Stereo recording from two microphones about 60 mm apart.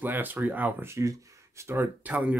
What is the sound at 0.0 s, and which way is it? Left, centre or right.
Speech, right.